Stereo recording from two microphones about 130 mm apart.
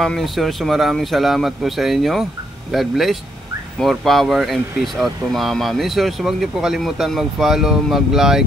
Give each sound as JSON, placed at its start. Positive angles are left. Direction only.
{"t": 0.0, "sound": "speech", "side_deg": 0}